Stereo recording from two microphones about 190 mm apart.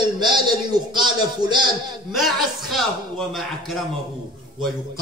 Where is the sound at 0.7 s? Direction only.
25° right (ahead or behind).